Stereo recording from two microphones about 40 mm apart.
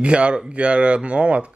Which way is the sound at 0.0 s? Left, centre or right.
Right.